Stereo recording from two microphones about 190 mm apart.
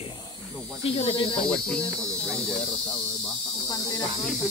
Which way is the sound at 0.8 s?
30° left (ahead or behind).